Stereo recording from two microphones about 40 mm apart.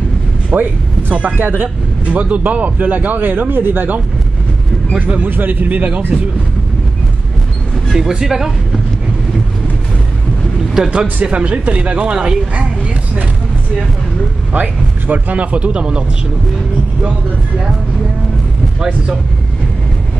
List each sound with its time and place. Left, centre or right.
0.5 s a sound: right
1.1 s speech: right
4.9 s speech: right
5.3 s speech: right
8.1 s speech: centre
10.9 s speech: right
14.5 s speech: right